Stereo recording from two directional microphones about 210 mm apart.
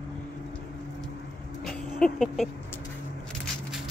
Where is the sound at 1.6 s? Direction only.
Centre (ahead or behind).